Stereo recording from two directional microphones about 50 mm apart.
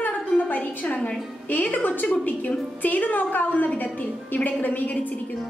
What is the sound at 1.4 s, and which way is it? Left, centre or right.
A woman's voice, left.